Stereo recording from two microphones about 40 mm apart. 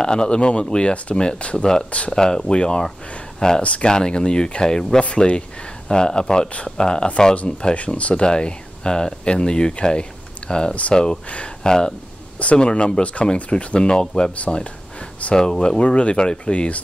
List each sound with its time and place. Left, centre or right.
0.0 s speech: centre
1.6 s speech: centre
1.9 s speech: left
2.1 s speech: centre
7.7 s speech: left
11.6 s speech: centre
14.5 s a sound: left
15.3 s speech: centre